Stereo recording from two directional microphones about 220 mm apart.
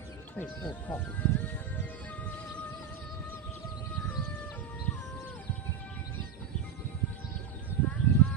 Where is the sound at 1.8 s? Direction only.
5° left (ahead or behind).